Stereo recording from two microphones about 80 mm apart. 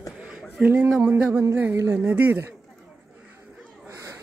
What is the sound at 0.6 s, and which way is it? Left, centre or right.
Speech, right.